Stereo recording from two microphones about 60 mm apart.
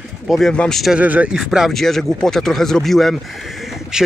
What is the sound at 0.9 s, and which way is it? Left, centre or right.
Speech, right.